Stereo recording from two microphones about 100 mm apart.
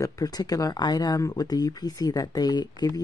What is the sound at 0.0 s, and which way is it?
Speech, 40° left (ahead or behind).